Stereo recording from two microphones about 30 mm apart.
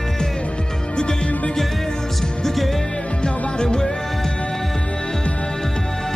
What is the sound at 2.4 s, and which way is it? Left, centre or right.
Music, centre.